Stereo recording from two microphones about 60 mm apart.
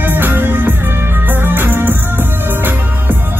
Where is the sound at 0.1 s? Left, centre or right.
Right.